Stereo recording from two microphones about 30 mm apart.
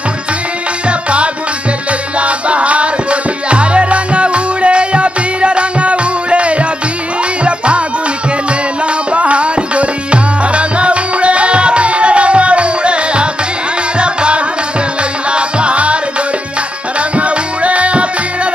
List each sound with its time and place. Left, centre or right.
0.8 s music: right
9.1 s tabla: right
13.9 s music: right
17.2 s music: right